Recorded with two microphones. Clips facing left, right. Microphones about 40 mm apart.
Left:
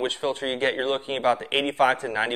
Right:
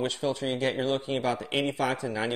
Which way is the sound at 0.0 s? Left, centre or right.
Left.